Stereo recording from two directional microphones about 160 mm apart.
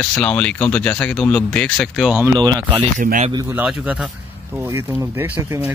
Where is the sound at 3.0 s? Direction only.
55° right (ahead or behind).